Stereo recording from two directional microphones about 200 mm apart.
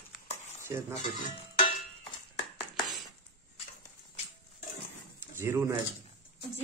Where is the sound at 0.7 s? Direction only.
10° right (ahead or behind).